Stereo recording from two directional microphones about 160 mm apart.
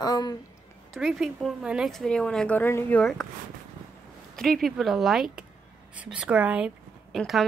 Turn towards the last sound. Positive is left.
turn(degrees=0)  # may be behind; listen again after turning